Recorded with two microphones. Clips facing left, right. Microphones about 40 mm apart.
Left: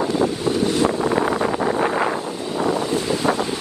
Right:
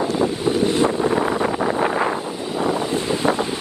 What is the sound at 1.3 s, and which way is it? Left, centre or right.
Wind noise, centre.